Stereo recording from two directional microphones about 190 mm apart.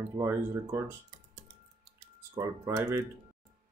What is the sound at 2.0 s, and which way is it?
Speech, 15° right (ahead or behind).